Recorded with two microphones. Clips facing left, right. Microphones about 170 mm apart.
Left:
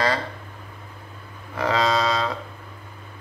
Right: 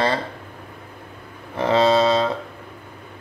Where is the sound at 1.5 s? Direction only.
30° right (ahead or behind).